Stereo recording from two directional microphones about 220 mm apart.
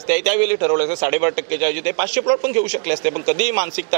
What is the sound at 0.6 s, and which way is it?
Speech, 25° right (ahead or behind).